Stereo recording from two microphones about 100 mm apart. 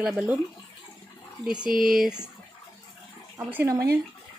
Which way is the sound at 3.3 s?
25° right (ahead or behind).